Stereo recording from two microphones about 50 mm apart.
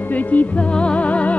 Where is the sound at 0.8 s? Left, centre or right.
Left.